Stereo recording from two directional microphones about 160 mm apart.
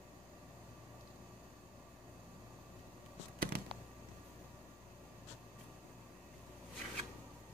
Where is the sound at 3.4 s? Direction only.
70° right (ahead or behind).